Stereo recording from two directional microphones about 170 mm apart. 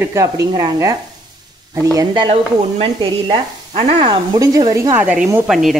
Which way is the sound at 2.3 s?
35° right (ahead or behind).